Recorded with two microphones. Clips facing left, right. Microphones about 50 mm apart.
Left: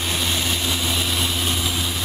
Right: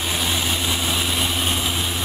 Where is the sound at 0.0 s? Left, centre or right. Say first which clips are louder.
Even; centre.